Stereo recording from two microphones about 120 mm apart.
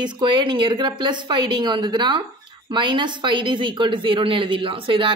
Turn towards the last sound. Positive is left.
turn(degrees=-45)  # may be behind; listen again after turning